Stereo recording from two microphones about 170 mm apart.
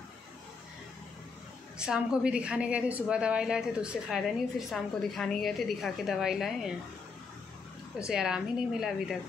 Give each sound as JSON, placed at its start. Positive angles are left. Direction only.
{"t": 1.8, "sound": "a woman's voice", "side_deg": -5}
{"t": 8.1, "sound": "a woman's voice", "side_deg": -5}